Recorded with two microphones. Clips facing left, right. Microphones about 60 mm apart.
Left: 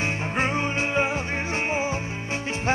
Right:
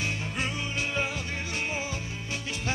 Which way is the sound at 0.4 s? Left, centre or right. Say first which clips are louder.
Left 9 dB; left.